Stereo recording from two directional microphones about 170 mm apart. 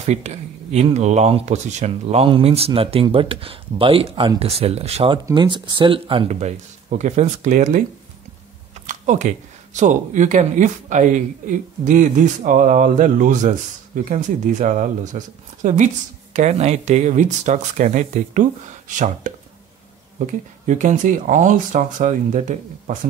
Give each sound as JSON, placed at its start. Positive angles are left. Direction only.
{"t": 0.0, "sound": "speech", "side_deg": -40}
{"t": 8.8, "sound": "a sound", "side_deg": -45}
{"t": 9.8, "sound": "speech", "side_deg": -45}